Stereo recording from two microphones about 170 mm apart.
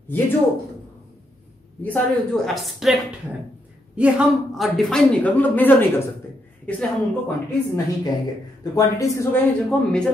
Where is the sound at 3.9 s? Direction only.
5° right (ahead or behind).